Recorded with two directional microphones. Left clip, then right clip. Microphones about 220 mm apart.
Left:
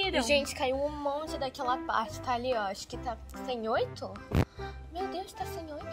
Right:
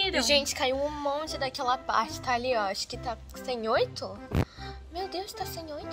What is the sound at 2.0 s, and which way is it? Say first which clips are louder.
Speech: right 4 dB; 25° right (ahead or behind).